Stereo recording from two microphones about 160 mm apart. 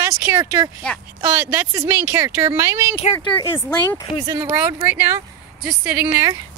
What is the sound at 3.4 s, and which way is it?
Speech, 15° left (ahead or behind).